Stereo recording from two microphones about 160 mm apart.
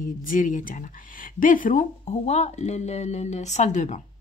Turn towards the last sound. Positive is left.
turn(degrees=45)  # may be behind; listen again after turning